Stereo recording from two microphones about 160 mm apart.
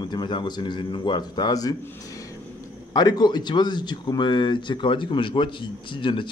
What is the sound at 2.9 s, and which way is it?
Speech, 25° left (ahead or behind).